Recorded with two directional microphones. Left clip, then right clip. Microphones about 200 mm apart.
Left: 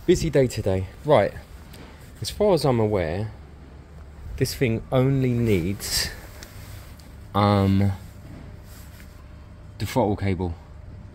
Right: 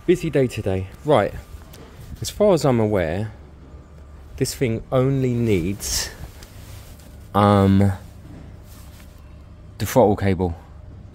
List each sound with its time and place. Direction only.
0.0 s speech: centre (ahead or behind)
2.2 s speech: 20° right (ahead or behind)
4.4 s speech: centre (ahead or behind)
7.3 s speech: 20° right (ahead or behind)
9.8 s speech: 35° right (ahead or behind)